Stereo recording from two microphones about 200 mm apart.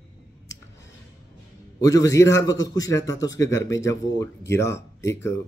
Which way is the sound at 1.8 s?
15° left (ahead or behind).